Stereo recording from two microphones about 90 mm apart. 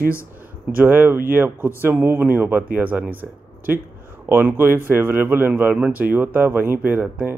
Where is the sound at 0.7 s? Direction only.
25° right (ahead or behind).